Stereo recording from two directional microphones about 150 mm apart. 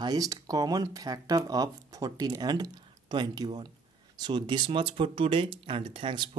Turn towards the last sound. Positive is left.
turn(degrees=-35)  # may be behind; listen again after turning